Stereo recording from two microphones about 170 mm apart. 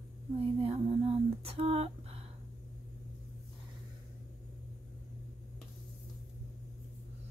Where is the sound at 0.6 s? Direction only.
35° right (ahead or behind).